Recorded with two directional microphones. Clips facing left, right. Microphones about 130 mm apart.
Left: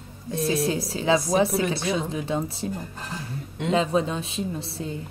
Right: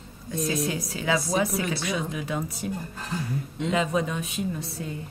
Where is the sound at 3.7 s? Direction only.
30° left (ahead or behind).